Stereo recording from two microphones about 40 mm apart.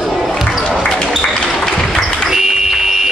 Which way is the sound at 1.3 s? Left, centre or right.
Left.